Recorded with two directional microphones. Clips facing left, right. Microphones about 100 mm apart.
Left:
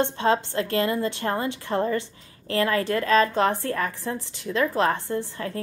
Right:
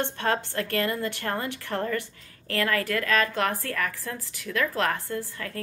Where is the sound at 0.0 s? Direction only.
20° left (ahead or behind).